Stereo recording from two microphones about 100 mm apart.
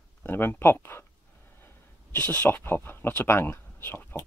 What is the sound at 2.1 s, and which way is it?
Speech, 20° left (ahead or behind).